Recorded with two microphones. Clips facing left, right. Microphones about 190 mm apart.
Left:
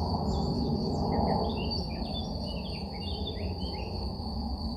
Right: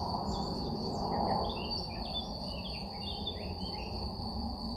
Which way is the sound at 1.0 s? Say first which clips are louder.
Left 3 dB; 15° left (ahead or behind).